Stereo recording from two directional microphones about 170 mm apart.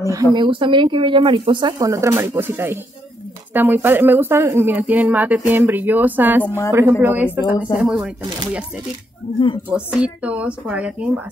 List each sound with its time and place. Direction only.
0.1 s speech: 25° right (ahead or behind); by 8.1 s 5° right (ahead or behind)
9.7 s speech: 5° right (ahead or behind)